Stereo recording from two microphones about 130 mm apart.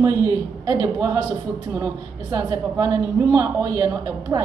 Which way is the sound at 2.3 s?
25° right (ahead or behind).